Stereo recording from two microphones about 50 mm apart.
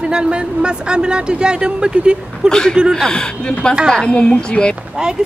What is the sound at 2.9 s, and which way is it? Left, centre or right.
A woman's voice, centre.